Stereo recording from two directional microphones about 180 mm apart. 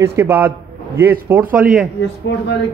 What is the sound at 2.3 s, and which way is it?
Speech, 90° left.